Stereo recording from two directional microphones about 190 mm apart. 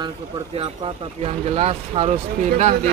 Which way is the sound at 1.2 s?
35° right (ahead or behind).